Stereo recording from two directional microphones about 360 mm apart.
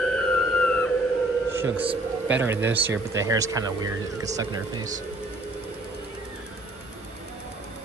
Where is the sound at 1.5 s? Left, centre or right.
Centre.